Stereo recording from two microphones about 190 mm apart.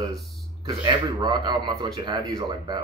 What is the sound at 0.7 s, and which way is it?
Speech, 25° right (ahead or behind).